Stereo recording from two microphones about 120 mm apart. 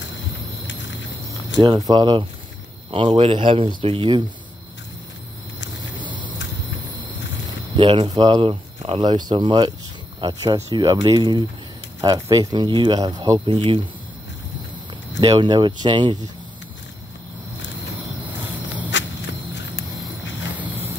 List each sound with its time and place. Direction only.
1.3 s speech: 30° right (ahead or behind); by 4.2 s 45° right (ahead or behind)
7.7 s speech: 45° right (ahead or behind)
13.5 s speech: 45° right (ahead or behind)
15.1 s speech: 40° right (ahead or behind)